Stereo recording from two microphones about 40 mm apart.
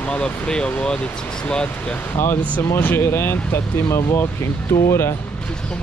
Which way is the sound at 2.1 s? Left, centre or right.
Left.